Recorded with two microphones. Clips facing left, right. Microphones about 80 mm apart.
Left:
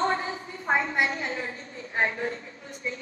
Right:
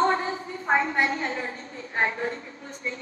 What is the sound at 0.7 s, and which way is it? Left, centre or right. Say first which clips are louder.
A woman's voice: right 2 dB; right.